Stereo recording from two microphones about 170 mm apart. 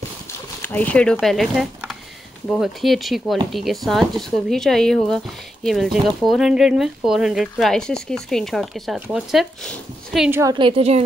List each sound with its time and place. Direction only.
0.6 s speech: 10° left (ahead or behind)
10.3 s a woman's voice: 20° right (ahead or behind)
10.6 s a woman's voice: 35° right (ahead or behind)